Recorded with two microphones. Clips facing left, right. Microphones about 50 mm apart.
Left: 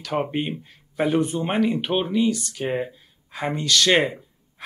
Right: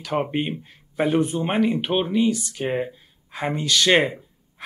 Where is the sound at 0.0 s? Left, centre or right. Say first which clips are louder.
Right 1 dB; centre.